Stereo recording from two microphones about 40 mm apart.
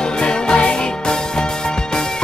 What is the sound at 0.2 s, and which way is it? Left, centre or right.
Music, left.